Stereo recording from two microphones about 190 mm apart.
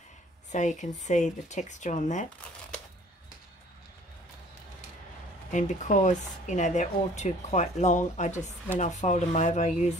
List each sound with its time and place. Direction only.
0.5 s speech: 40° left (ahead or behind)
5.5 s speech: 40° left (ahead or behind)